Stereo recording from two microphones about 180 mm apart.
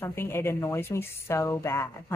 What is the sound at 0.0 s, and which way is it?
Speech, 15° left (ahead or behind).